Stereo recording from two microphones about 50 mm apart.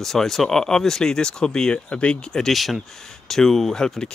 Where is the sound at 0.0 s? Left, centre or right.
Centre.